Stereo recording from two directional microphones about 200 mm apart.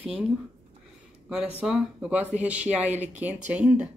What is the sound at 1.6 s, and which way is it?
Speech, 5° right (ahead or behind).